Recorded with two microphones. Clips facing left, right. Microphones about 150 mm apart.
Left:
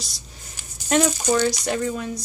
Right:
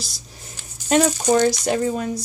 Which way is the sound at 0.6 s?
15° left (ahead or behind).